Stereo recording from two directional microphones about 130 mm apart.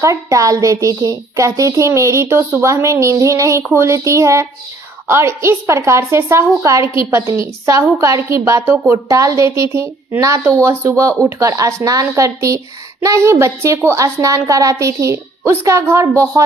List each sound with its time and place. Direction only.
0.0 s a woman's voice: 25° right (ahead or behind)